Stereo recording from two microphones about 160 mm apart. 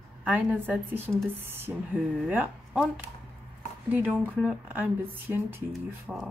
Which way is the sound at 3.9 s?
10° right (ahead or behind).